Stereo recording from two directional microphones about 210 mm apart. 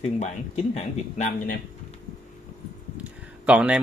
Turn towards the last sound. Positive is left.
turn(degrees=-5)  # may be behind; listen again after turning